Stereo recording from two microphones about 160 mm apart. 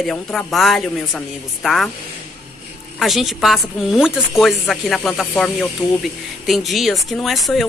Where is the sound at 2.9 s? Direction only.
Centre (ahead or behind).